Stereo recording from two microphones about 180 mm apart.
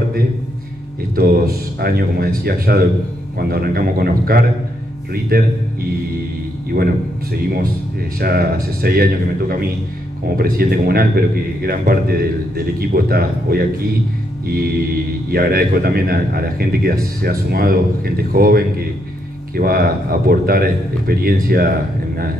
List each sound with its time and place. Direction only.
1.1 s a man's voice: 55° right (ahead or behind)
8.2 s a man's voice: 60° right (ahead or behind)